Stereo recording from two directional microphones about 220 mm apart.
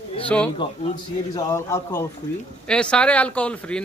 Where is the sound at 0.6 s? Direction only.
20° left (ahead or behind).